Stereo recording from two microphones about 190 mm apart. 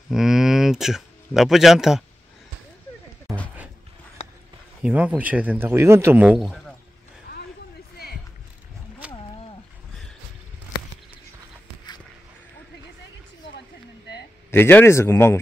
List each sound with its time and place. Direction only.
0.1 s a sound: centre (ahead or behind)
4.8 s a man's voice: 5° right (ahead or behind)
9.0 s wild animals: 5° right (ahead or behind)
14.5 s speech: 10° left (ahead or behind)